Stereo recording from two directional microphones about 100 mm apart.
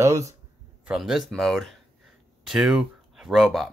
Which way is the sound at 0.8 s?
5° right (ahead or behind).